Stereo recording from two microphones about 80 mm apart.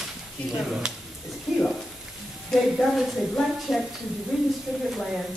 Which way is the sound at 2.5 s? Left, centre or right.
Centre.